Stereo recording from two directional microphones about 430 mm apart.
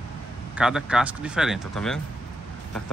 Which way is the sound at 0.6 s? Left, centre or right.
Centre.